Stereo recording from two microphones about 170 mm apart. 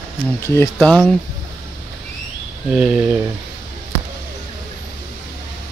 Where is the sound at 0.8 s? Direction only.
5° left (ahead or behind).